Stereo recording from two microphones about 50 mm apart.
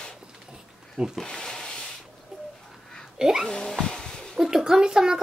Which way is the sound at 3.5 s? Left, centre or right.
Centre.